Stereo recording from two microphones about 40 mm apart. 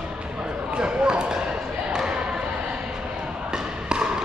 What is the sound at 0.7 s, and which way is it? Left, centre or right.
Basketball bounce, right.